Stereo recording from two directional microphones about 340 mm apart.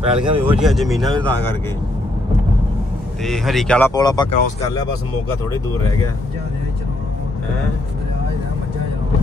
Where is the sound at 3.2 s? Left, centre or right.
Centre.